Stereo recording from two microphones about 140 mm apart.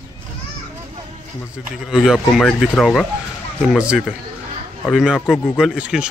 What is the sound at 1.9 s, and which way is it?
Speech, 5° right (ahead or behind).